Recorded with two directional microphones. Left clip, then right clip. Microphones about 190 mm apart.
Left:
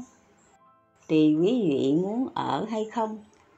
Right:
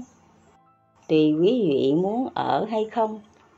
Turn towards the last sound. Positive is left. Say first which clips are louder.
# right 5 dB
turn(degrees=15)  # may be behind; listen again after turning